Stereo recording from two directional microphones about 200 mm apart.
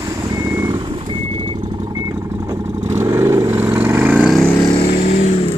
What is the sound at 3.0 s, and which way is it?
Vehicle, 10° right (ahead or behind).